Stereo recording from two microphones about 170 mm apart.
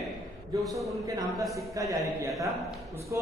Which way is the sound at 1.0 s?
20° right (ahead or behind).